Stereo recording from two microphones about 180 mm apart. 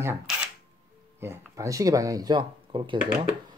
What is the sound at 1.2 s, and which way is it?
Speech, 15° right (ahead or behind).